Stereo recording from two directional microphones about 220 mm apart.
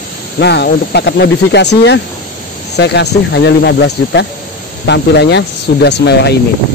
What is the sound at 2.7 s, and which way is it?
Speech, 50° left (ahead or behind).